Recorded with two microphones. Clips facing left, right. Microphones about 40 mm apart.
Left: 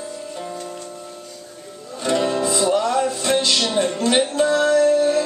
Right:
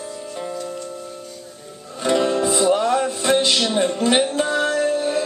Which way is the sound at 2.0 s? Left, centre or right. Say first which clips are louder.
Right 1 dB; centre.